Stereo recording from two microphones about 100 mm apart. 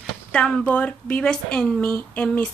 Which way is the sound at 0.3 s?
10° left (ahead or behind).